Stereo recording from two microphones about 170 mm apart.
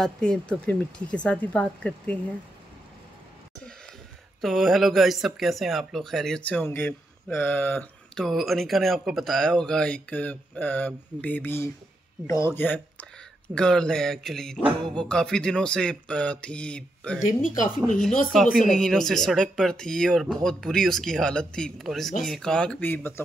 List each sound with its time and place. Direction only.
0.0 s speech: 5° left (ahead or behind)
4.4 s speech: centre (ahead or behind)
17.2 s speech: 50° left (ahead or behind)
18.3 s speech: centre (ahead or behind)